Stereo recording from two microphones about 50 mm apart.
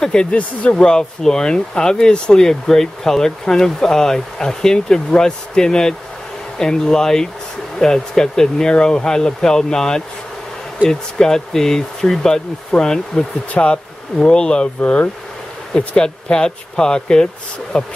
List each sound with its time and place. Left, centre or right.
0.0 s speech: centre
0.7 s speech: centre
13.5 s speech: left